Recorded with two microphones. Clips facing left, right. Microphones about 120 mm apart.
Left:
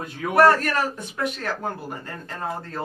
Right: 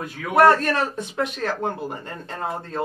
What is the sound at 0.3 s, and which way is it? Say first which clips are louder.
A man's voice: right 1 dB; 20° right (ahead or behind).